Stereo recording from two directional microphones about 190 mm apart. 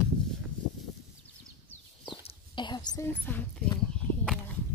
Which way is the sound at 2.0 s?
25° left (ahead or behind).